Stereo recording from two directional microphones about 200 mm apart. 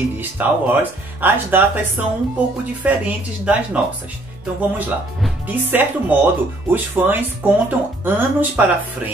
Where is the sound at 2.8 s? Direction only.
5° right (ahead or behind).